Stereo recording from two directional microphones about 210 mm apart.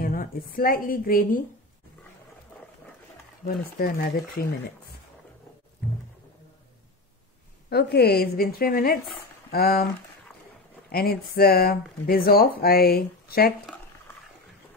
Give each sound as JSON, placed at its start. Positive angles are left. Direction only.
{"t": 0.0, "sound": "a woman's voice", "side_deg": 40}
{"t": 3.4, "sound": "speech", "side_deg": 45}
{"t": 7.7, "sound": "speech", "side_deg": 50}
{"t": 10.9, "sound": "speech", "side_deg": 45}